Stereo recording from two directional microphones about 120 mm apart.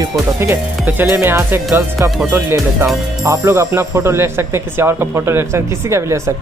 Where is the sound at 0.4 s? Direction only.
20° right (ahead or behind).